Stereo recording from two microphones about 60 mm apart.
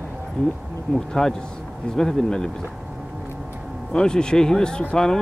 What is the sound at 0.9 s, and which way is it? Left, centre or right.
Speech, centre.